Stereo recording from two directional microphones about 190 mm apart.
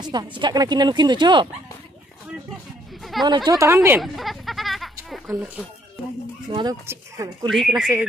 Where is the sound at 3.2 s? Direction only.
20° right (ahead or behind).